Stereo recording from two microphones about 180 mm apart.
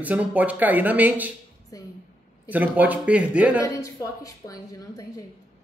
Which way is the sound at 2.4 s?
10° right (ahead or behind).